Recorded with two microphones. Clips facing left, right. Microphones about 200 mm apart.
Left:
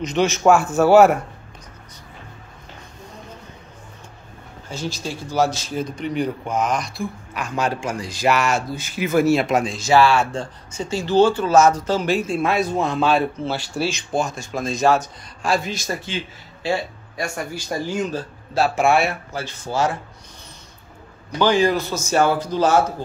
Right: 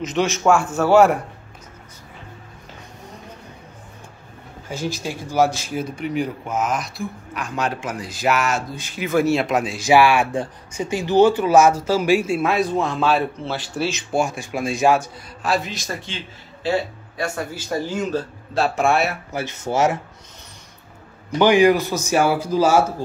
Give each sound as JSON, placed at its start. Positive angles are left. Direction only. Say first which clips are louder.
{"t": 0.0, "sound": "speech", "louder": "left 2 dB", "side_deg": 0}
{"t": 4.6, "sound": "speech", "louder": "right 2 dB", "side_deg": -15}
{"t": 9.8, "sound": "speech", "louder": "right 2 dB", "side_deg": -15}
{"t": 18.5, "sound": "speech", "louder": "left 1 dB", "side_deg": 0}
{"t": 19.3, "sound": "speech", "louder": "right 2 dB", "side_deg": -20}
{"t": 21.4, "sound": "speech", "louder": "right 3 dB", "side_deg": -15}